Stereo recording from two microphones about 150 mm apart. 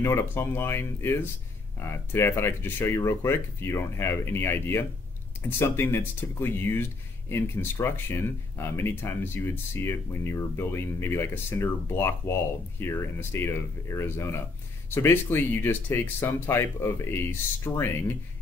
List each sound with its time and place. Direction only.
0.0 s speech: 15° left (ahead or behind)